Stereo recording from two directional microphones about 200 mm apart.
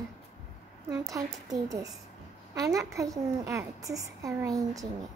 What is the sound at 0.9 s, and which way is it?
A woman's voice, 15° right (ahead or behind).